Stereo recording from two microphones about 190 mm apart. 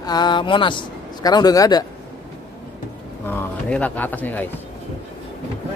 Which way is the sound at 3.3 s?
10° left (ahead or behind).